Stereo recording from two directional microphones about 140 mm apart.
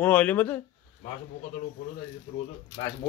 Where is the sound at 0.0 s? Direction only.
10° left (ahead or behind).